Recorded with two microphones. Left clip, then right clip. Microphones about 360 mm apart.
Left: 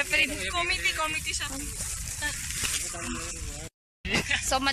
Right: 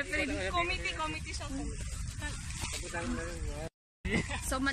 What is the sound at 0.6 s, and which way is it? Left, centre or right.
Speech, centre.